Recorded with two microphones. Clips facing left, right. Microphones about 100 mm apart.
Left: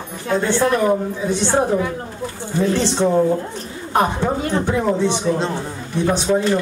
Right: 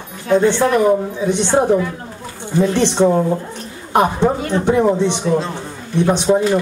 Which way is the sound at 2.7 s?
20° right (ahead or behind).